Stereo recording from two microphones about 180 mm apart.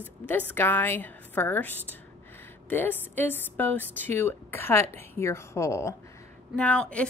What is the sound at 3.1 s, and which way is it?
Speech, 10° left (ahead or behind).